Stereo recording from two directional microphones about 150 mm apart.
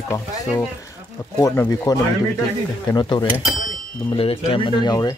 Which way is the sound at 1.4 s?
20° left (ahead or behind).